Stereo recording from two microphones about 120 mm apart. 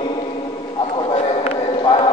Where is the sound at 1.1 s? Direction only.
60° left (ahead or behind).